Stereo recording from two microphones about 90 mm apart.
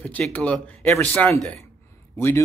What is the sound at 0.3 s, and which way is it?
Speech, 15° left (ahead or behind).